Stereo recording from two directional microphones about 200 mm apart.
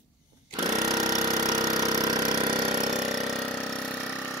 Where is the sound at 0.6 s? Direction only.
15° right (ahead or behind).